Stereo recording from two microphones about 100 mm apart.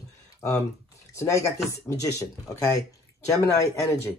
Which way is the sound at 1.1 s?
30° left (ahead or behind).